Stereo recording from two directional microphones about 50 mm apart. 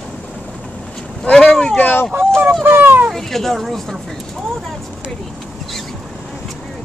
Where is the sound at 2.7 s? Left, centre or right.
Right.